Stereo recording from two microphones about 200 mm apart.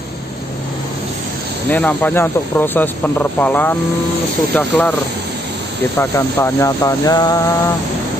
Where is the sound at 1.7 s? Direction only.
10° left (ahead or behind).